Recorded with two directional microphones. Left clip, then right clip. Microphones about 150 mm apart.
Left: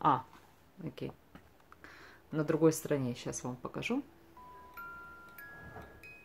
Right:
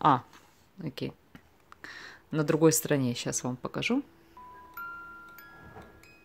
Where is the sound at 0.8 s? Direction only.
60° right (ahead or behind).